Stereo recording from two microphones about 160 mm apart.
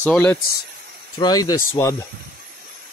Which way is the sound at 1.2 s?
25° left (ahead or behind).